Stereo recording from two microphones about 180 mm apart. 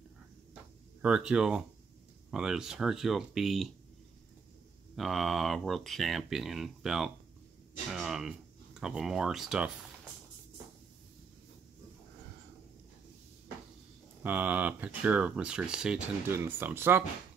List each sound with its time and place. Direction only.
1.0 s speech: 5° right (ahead or behind)
4.9 s speech: centre (ahead or behind)
14.2 s speech: 10° right (ahead or behind)